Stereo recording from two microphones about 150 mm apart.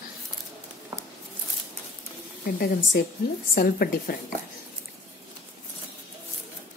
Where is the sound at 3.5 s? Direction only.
80° left.